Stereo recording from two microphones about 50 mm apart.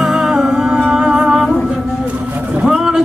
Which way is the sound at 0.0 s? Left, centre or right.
Centre.